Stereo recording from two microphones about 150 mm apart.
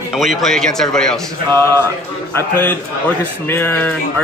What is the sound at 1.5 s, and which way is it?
A man's voice, 15° left (ahead or behind).